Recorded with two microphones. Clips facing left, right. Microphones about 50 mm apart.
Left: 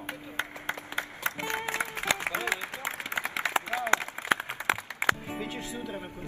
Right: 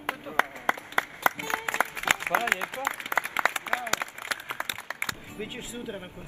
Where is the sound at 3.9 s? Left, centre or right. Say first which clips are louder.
Left 8 dB; left.